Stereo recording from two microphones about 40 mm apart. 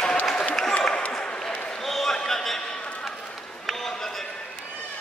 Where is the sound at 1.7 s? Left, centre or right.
Centre.